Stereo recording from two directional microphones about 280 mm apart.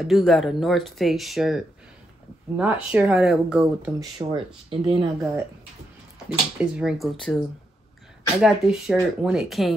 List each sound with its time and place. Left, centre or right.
0.0 s speech: centre
6.1 s speech: centre